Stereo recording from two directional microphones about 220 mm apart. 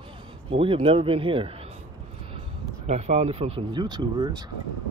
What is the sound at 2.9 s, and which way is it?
Speech, 30° right (ahead or behind).